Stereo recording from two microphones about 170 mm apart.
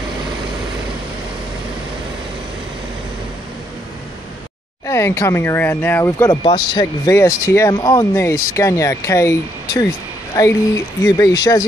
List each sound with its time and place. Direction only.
4.8 s speech: 15° left (ahead or behind)
6.4 s speech: 25° left (ahead or behind)